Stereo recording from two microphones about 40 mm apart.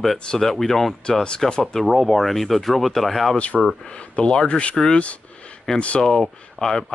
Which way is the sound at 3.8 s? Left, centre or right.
Left.